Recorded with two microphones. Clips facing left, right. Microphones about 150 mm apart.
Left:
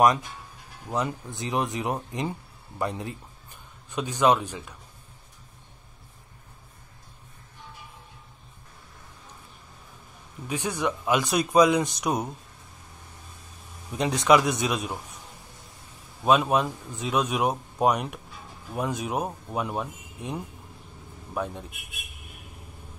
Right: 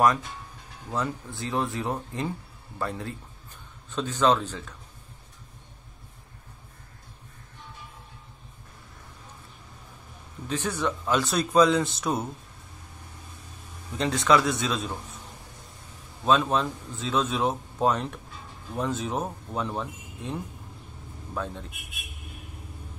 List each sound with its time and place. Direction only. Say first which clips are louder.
0.8 s a man's voice: left 1 dB; 15° left (ahead or behind)
10.5 s a man's voice: even; 15° left (ahead or behind)
13.9 s a man's voice: left 2 dB; 15° left (ahead or behind)
16.3 s a man's voice: left 2 dB; 15° left (ahead or behind)
21.4 s a man's voice: left 2 dB; 15° left (ahead or behind)